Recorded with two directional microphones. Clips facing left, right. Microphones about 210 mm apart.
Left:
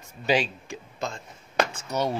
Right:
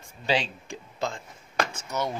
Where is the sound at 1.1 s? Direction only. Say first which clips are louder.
Even; 25° left (ahead or behind).